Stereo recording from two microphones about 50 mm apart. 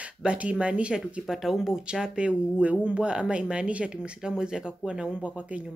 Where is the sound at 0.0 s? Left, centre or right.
Right.